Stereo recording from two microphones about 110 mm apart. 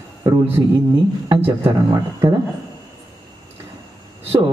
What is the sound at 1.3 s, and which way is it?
A man's voice, 50° right (ahead or behind).